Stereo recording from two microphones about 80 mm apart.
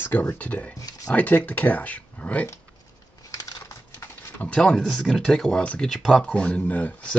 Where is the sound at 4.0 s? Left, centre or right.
Left.